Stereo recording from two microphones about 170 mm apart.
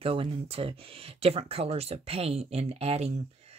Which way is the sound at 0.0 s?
35° right (ahead or behind).